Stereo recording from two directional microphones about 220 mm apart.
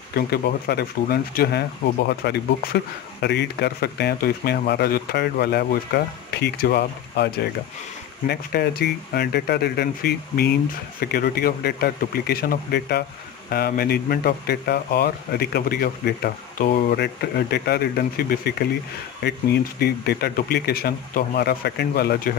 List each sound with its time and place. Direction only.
0.1 s a man's voice: 45° left (ahead or behind)
19.8 s a man's voice: 45° left (ahead or behind)